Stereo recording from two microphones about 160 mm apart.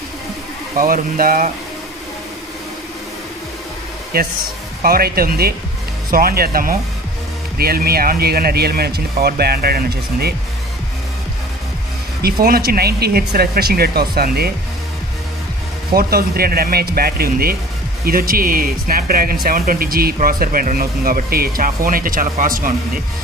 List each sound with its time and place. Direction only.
0.7 s speech: 60° right (ahead or behind)
4.1 s speech: 70° right (ahead or behind)
12.2 s speech: 70° right (ahead or behind)
15.9 s speech: 70° right (ahead or behind)